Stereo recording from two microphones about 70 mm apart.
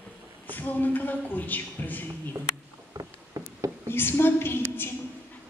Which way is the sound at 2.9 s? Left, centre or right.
Right.